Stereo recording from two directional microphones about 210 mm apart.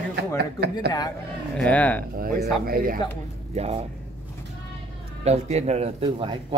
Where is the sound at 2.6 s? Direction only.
45° right (ahead or behind).